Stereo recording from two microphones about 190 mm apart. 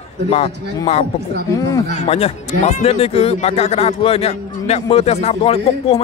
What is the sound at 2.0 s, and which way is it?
Speech, 35° left (ahead or behind).